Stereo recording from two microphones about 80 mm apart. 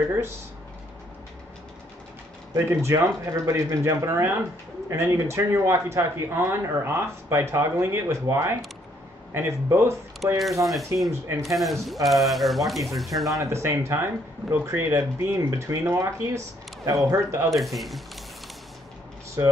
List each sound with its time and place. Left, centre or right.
0.1 s speech: right
2.5 s speech: right
10.6 s speech: centre
11.1 s speech: right
11.5 s speech: centre
13.4 s speech: right
17.5 s speech: centre
19.4 s speech: right